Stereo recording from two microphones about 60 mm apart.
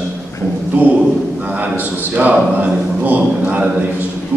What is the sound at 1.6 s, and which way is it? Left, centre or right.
Speech, right.